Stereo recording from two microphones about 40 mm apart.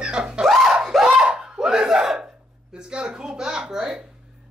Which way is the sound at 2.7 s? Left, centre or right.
Right.